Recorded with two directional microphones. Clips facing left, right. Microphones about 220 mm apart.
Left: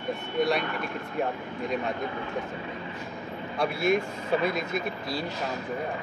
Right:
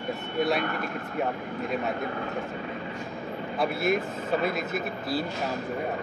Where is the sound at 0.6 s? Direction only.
50° right (ahead or behind).